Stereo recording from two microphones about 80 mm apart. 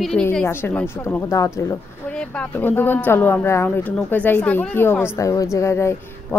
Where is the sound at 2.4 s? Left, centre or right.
Left.